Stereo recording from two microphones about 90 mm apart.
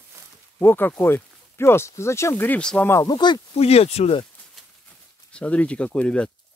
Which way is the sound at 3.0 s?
55° left (ahead or behind).